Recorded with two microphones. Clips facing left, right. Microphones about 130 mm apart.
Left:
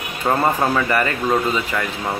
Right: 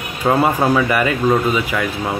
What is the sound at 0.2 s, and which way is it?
A man's voice, 10° right (ahead or behind).